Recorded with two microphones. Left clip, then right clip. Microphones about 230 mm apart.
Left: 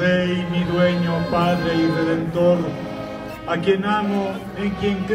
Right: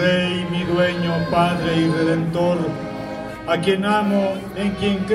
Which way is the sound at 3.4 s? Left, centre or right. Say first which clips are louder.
Right 1 dB; right.